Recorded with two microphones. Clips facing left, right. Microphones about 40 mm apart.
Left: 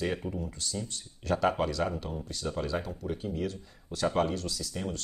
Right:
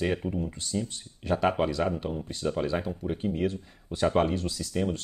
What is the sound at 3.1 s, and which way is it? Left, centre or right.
Speech, right.